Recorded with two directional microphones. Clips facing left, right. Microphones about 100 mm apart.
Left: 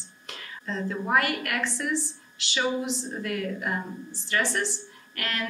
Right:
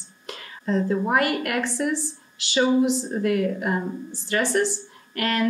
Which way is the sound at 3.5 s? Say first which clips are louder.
Right 5 dB; 35° right (ahead or behind).